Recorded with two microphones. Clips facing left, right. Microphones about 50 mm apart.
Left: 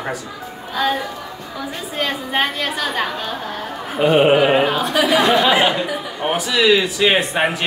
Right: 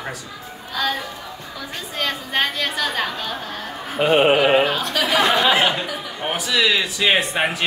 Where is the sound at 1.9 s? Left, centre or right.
Centre.